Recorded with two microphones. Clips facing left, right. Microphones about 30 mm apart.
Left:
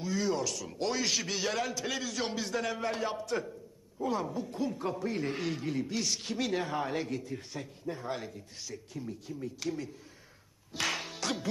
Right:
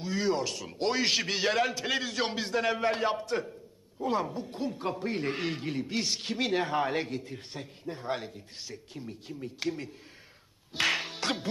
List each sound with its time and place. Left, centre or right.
0.0 s a man's voice: right
10.8 s music: right